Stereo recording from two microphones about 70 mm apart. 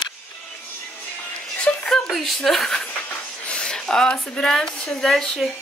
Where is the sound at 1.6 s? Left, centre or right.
Centre.